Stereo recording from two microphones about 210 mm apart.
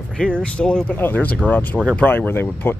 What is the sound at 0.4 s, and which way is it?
Speech, 5° left (ahead or behind).